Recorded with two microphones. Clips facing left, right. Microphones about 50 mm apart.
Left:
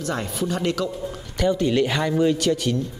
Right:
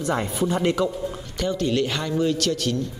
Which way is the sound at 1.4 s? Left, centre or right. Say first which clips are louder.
Left 3 dB; centre.